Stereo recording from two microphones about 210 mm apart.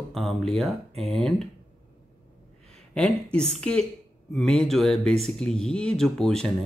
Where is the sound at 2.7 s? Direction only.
5° left (ahead or behind).